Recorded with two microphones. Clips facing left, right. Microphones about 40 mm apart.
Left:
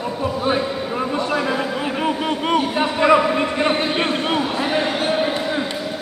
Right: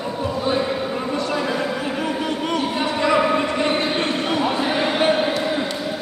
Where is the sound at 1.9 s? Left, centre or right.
Left.